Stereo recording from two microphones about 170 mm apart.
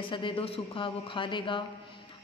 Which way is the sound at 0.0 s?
30° left (ahead or behind).